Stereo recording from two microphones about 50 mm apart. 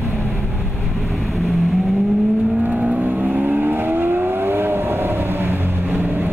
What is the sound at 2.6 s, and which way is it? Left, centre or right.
Vehicle, right.